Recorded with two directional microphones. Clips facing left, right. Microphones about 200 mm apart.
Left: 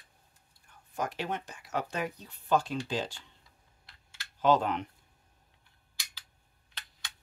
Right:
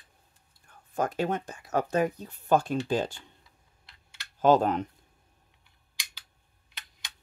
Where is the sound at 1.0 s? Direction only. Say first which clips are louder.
Right 6 dB; 50° right (ahead or behind).